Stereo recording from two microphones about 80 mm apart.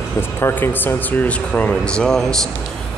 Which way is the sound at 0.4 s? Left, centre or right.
Left.